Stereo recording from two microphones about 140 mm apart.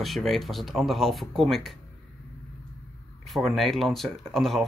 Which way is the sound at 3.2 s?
Centre (ahead or behind).